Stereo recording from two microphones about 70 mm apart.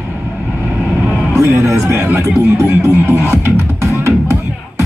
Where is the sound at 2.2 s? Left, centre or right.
Right.